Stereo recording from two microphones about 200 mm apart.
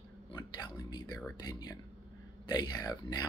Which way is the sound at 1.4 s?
20° left (ahead or behind).